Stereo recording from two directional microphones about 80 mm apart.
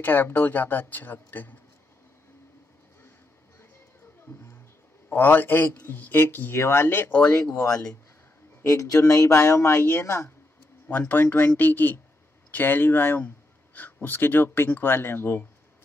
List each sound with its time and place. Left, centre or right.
0.0 s speech: left
5.1 s speech: left
8.6 s speech: left
10.9 s speech: left